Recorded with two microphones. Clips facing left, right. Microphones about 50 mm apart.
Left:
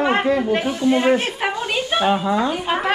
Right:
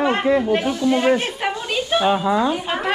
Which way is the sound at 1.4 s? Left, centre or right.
Centre.